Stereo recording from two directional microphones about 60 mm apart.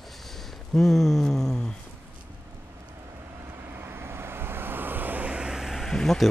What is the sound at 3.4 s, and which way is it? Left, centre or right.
Vehicle, right.